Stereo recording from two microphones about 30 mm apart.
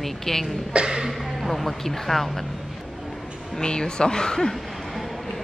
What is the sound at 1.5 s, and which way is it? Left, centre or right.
Speech, centre.